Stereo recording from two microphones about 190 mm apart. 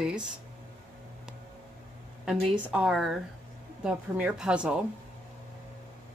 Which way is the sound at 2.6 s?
5° right (ahead or behind).